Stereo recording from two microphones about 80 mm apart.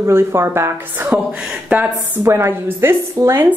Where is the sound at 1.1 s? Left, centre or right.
Centre.